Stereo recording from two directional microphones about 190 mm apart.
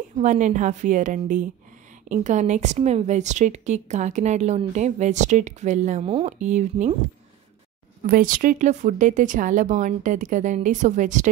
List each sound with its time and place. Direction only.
0.2 s a woman's voice: 40° right (ahead or behind)
8.1 s a woman's voice: 45° right (ahead or behind)